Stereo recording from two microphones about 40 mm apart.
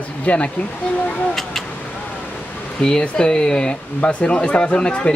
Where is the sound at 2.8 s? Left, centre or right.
Left.